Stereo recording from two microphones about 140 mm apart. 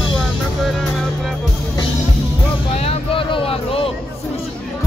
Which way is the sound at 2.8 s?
40° left (ahead or behind).